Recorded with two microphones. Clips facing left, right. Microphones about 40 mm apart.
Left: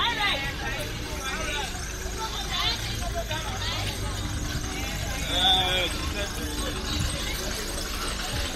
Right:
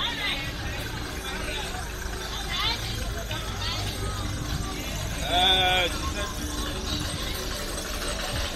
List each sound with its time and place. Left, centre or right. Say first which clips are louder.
5.3 s vehicle: right 2 dB; right